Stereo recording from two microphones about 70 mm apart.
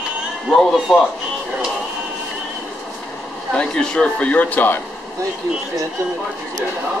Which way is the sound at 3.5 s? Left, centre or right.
Centre.